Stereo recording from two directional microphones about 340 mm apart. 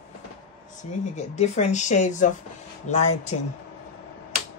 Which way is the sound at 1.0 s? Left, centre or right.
Centre.